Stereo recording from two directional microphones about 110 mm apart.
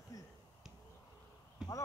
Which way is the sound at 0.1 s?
30° left (ahead or behind).